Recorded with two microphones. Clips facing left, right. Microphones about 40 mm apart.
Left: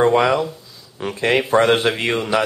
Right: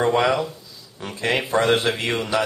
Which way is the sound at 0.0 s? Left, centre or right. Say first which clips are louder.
Left 4 dB; centre.